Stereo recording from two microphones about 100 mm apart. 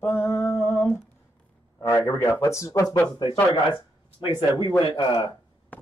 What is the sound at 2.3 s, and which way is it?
Speech, 30° left (ahead or behind).